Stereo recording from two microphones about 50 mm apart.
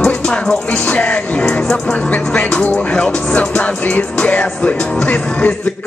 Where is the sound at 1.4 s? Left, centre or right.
Centre.